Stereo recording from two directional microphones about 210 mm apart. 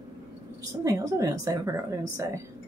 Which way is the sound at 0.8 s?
15° right (ahead or behind).